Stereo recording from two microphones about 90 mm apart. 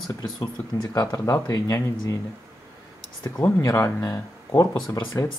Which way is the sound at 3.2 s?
40° left (ahead or behind).